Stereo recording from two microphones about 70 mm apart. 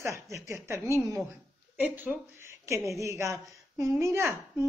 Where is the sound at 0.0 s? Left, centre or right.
Right.